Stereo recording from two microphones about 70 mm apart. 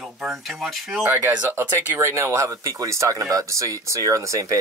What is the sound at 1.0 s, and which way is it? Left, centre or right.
Speech, right.